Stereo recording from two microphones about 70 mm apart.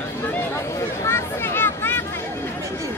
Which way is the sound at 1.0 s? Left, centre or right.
Left.